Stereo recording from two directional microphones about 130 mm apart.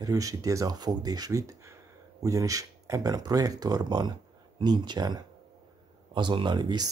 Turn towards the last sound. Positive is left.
turn(degrees=-35)  # may be behind; listen again after turning